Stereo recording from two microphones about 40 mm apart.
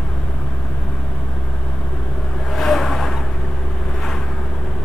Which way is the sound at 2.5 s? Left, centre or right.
Centre.